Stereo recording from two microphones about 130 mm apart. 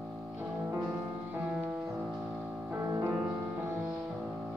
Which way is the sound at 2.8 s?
20° right (ahead or behind).